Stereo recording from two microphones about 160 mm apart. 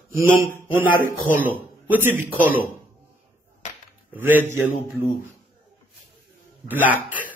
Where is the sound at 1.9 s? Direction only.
10° right (ahead or behind).